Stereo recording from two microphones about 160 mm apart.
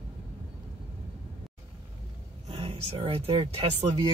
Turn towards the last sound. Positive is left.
turn(degrees=-35)  # may be behind; listen again after turning